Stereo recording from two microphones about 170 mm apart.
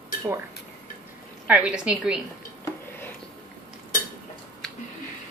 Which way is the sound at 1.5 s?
5° right (ahead or behind).